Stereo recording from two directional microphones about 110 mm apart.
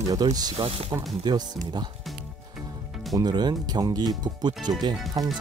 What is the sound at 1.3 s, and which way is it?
Speech, 40° right (ahead or behind).